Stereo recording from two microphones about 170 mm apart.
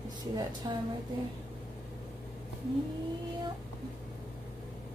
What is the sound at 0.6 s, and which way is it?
Speech, 25° right (ahead or behind).